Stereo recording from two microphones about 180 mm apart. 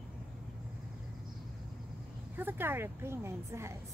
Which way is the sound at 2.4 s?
10° right (ahead or behind).